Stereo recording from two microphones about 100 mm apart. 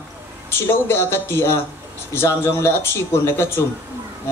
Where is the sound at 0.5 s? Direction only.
25° left (ahead or behind).